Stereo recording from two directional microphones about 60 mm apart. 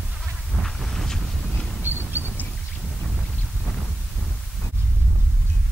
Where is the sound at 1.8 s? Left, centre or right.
Right.